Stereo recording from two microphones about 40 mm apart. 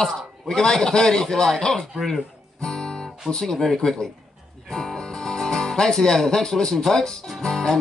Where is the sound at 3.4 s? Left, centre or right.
Centre.